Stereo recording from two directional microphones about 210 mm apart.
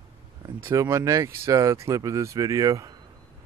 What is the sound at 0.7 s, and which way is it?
Speech, 15° right (ahead or behind).